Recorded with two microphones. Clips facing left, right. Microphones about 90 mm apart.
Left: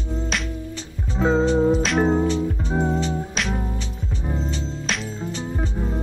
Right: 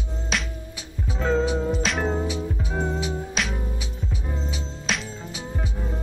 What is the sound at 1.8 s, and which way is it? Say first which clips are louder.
Music: left 6 dB; centre (ahead or behind).